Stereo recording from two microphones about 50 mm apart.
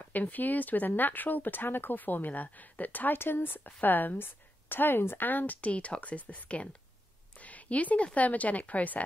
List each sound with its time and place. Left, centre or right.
0.0 s speech: left
3.2 s a woman's voice: left
5.6 s speech: left